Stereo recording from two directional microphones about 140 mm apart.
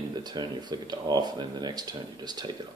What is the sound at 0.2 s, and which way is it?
Speech, 30° right (ahead or behind).